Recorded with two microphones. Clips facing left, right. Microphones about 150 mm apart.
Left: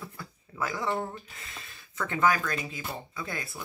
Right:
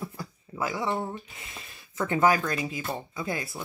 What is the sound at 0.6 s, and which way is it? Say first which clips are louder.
Speech: right 2 dB; 15° right (ahead or behind).